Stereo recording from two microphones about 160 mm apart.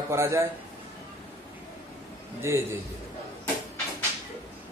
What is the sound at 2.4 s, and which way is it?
Speech, 15° right (ahead or behind).